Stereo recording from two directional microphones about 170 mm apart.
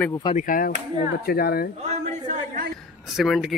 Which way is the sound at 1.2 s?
65° left (ahead or behind).